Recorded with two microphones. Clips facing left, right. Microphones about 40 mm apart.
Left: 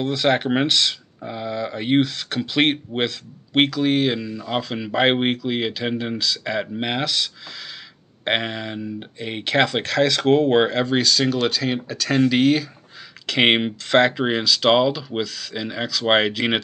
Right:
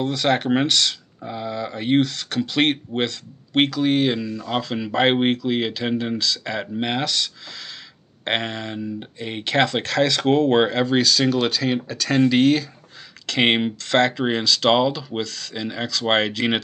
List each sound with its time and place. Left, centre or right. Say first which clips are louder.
0.0 s speech: left 1 dB; centre
8.3 s speech: left 1 dB; centre